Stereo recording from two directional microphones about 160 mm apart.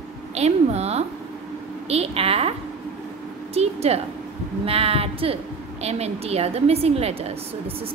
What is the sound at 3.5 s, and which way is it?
A woman's voice, 40° right (ahead or behind).